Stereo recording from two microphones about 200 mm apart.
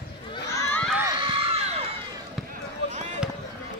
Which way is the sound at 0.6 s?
5° left (ahead or behind).